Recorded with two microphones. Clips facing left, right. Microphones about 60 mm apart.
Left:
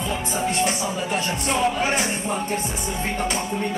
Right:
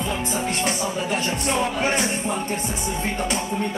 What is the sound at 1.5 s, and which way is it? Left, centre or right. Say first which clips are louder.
Speech: left 2 dB; centre.